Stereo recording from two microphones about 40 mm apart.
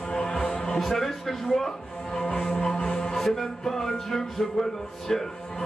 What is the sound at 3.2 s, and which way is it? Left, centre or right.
Music, centre.